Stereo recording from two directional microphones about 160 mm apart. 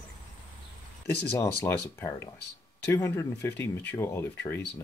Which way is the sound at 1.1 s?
90° left.